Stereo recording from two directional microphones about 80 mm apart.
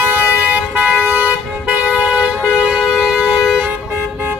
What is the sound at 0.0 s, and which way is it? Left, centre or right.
Vehicle, right.